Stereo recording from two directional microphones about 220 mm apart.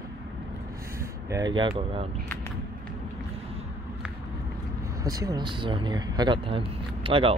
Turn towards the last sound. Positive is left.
turn(degrees=-25)  # may be behind; listen again after turning